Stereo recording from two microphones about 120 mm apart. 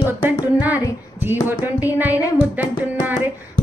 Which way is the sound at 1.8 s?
15° right (ahead or behind).